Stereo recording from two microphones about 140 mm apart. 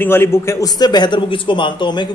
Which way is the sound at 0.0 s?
15° left (ahead or behind).